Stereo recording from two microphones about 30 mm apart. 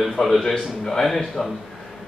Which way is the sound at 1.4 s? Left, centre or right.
Centre.